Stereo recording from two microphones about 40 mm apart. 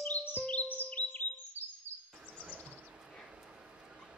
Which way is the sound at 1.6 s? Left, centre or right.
Left.